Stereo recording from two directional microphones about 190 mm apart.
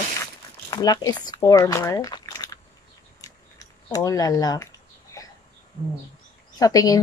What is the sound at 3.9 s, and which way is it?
Speech, 20° left (ahead or behind).